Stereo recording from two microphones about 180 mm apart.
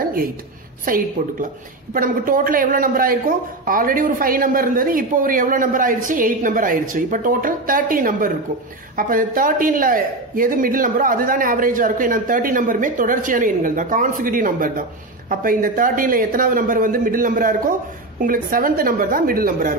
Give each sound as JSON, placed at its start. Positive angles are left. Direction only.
{"t": 0.8, "sound": "speech", "side_deg": -50}